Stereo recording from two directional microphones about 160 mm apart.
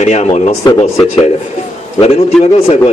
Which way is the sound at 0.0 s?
45° left (ahead or behind).